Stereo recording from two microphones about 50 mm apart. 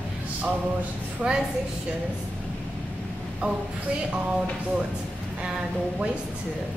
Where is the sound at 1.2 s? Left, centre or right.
Centre.